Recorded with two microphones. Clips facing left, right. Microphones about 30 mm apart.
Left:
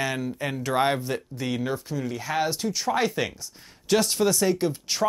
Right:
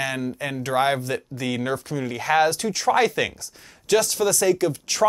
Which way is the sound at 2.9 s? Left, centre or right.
Right.